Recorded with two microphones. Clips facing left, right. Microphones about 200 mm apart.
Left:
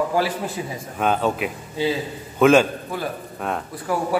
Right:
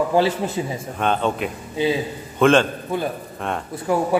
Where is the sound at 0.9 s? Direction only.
5° left (ahead or behind).